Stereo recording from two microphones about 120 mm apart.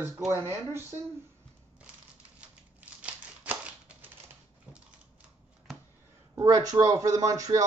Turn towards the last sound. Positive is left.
turn(degrees=-30)  # may be behind; listen again after turning